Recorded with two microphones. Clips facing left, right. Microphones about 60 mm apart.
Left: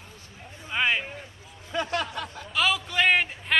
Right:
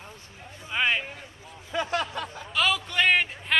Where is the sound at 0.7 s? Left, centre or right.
Centre.